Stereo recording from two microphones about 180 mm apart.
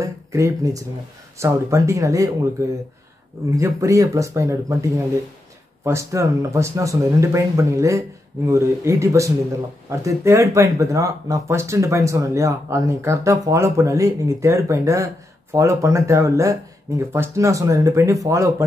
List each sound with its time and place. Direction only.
0.0 s speech: 15° right (ahead or behind)
3.5 s speech: 15° right (ahead or behind)